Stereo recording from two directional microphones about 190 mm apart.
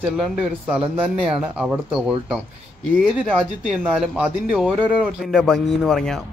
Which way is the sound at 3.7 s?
5° right (ahead or behind).